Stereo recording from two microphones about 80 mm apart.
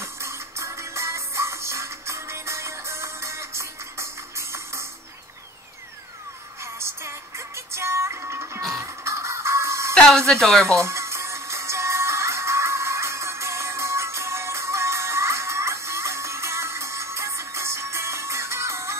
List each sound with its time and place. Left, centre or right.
0.0 s music: right
6.6 s music: right
9.9 s speech: centre
10.8 s music: right